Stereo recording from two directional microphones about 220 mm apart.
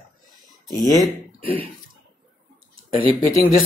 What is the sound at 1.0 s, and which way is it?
Speech, 25° right (ahead or behind).